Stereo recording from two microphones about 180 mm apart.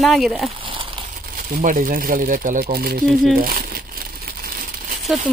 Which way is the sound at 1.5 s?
50° right (ahead or behind).